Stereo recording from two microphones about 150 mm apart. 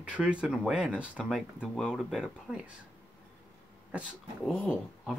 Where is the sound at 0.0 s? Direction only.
5° right (ahead or behind).